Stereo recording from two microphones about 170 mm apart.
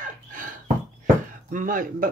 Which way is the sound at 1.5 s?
50° right (ahead or behind).